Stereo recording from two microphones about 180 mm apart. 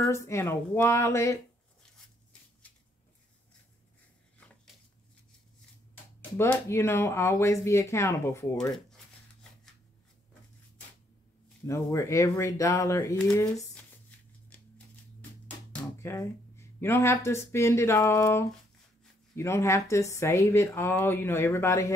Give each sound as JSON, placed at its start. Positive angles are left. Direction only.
{"t": 0.0, "sound": "speech", "side_deg": 15}
{"t": 6.3, "sound": "speech", "side_deg": 15}
{"t": 8.7, "sound": "shuffling cards", "side_deg": 0}
{"t": 11.6, "sound": "speech", "side_deg": 15}
{"t": 15.7, "sound": "speech", "side_deg": 15}